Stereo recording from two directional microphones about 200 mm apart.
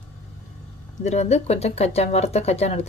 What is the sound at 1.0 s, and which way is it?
Speech, 35° left (ahead or behind).